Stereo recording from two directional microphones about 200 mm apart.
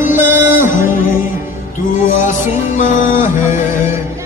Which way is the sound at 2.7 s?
40° left (ahead or behind).